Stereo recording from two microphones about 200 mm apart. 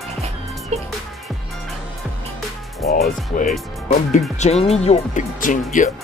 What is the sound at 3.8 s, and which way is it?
Speech, 35° left (ahead or behind).